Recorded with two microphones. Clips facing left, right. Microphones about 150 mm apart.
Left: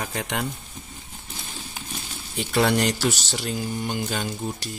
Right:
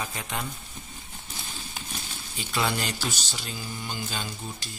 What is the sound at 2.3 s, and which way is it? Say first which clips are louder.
Speech: left 7 dB; 70° left (ahead or behind).